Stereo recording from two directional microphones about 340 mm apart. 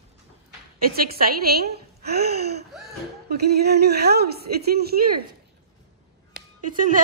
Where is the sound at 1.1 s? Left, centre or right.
Right.